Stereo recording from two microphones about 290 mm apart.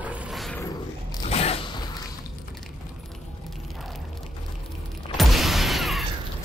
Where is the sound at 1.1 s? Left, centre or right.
Left.